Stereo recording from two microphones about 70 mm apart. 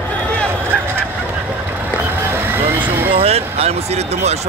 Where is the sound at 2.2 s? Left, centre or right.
Right.